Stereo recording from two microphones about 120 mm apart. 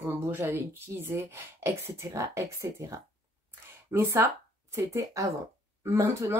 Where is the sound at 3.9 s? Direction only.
20° right (ahead or behind).